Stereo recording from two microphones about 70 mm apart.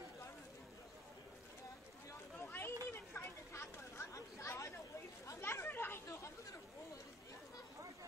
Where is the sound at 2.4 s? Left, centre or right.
Left.